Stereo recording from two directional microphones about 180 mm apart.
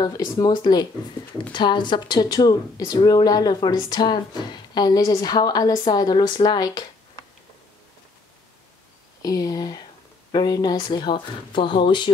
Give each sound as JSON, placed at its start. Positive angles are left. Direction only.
{"t": 0.0, "sound": "speech", "side_deg": 20}
{"t": 9.2, "sound": "speech", "side_deg": 20}